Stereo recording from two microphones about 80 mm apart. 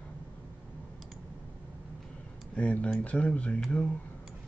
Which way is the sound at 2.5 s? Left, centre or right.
Centre.